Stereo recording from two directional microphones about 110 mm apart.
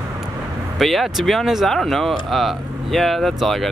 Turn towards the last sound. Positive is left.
turn(degrees=0)  # may be behind; listen again after turning